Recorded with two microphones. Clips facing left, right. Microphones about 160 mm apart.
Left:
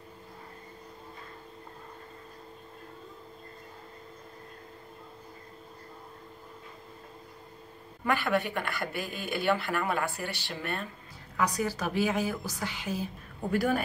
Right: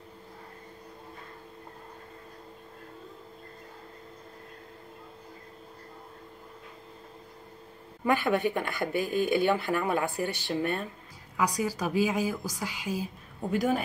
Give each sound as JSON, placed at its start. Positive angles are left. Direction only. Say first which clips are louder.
{"t": 8.0, "sound": "speech", "louder": "right 3 dB", "side_deg": -20}
{"t": 11.3, "sound": "a woman's voice", "louder": "right 1 dB", "side_deg": -10}